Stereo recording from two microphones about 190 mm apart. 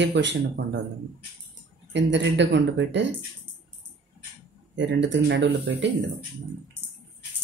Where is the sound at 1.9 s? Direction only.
70° right (ahead or behind).